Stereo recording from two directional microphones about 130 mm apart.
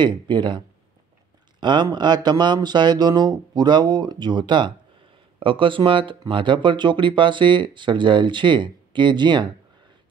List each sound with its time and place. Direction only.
0.0 s speech: 35° right (ahead or behind)